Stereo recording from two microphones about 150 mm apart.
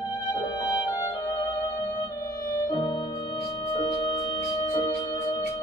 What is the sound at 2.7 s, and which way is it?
Music, 30° left (ahead or behind).